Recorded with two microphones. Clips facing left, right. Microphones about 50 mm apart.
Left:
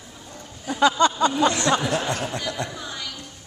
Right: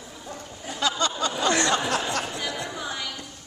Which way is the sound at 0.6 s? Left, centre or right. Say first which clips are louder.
Left 8 dB; left.